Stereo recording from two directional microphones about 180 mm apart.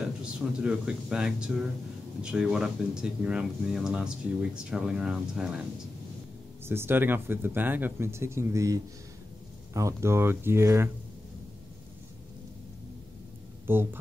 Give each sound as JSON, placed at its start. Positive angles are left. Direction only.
{"t": 0.0, "sound": "speech", "side_deg": -5}
{"t": 6.6, "sound": "speech", "side_deg": -15}
{"t": 13.7, "sound": "speech", "side_deg": -10}